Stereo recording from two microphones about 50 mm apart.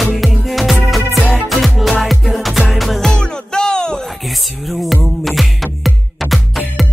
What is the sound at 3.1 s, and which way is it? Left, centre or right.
Music, centre.